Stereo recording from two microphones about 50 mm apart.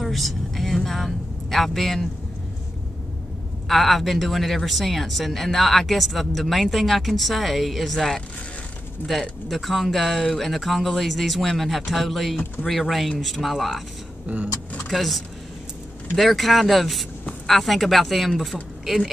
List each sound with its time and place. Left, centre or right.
0.0 s speech: centre
3.6 s a woman's voice: centre
9.5 s a woman's voice: centre
14.2 s speech: right
14.9 s a woman's voice: centre